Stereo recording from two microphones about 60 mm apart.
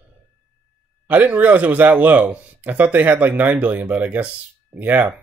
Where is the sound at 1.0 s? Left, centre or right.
Right.